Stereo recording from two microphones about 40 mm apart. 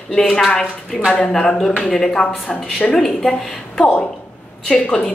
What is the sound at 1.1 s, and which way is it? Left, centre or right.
A woman's voice, centre.